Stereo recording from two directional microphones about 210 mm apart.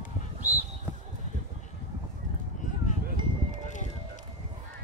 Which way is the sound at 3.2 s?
20° right (ahead or behind).